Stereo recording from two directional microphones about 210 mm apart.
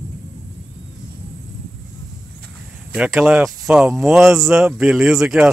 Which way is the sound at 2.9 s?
Centre (ahead or behind).